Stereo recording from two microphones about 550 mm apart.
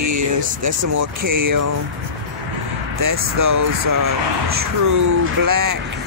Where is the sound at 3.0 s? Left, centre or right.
Right.